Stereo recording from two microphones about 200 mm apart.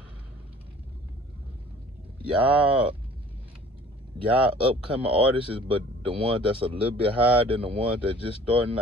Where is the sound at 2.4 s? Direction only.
30° right (ahead or behind).